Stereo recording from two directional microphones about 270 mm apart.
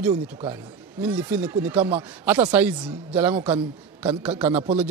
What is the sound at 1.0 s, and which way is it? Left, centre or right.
Speech, centre.